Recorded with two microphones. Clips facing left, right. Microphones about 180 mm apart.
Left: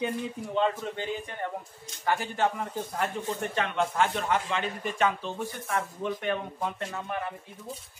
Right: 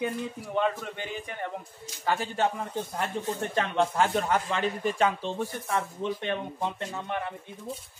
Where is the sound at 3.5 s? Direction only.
35° right (ahead or behind).